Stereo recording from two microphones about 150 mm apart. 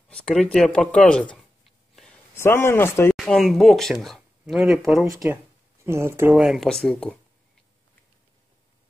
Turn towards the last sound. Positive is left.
turn(degrees=5)  # may be behind; listen again after turning